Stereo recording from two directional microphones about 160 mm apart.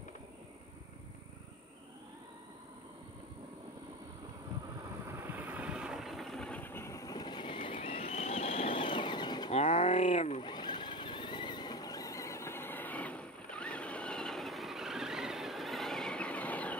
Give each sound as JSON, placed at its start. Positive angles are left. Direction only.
{"t": 5.0, "sound": "vehicle", "side_deg": -15}
{"t": 9.5, "sound": "a sound", "side_deg": 40}
{"t": 10.4, "sound": "vehicle", "side_deg": 30}